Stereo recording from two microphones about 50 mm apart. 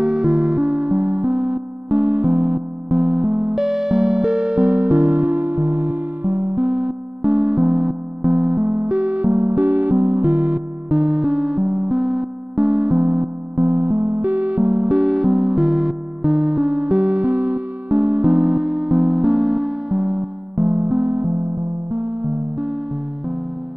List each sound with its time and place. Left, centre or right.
0.0 s music: right
3.5 s music: centre; by 8.9 s right
8.9 s music: right
9.3 s music: right
9.6 s music: right
10.2 s music: right
12.9 s music: right
14.2 s music: right
14.9 s music: centre
15.2 s music: right
15.5 s music: centre; by 20.2 s right
20.5 s music: right
21.9 s music: right